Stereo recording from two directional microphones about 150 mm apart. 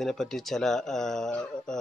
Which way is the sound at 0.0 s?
Centre (ahead or behind).